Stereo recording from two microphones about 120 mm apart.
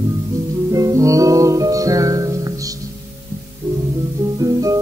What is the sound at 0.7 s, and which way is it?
Music, 25° right (ahead or behind).